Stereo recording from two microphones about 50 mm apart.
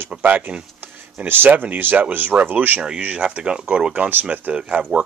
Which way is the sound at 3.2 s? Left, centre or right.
Right.